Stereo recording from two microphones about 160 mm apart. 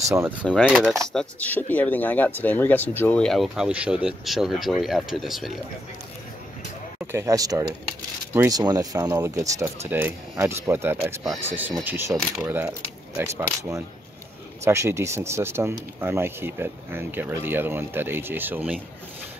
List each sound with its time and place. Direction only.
0.1 s speech: 10° right (ahead or behind)
1.1 s speech: 10° left (ahead or behind)
7.0 s speech: 15° right (ahead or behind)